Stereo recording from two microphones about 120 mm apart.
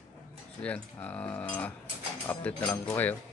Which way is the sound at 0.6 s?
10° left (ahead or behind).